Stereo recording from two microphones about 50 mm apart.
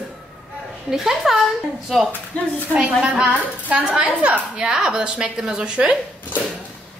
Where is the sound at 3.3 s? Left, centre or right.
Right.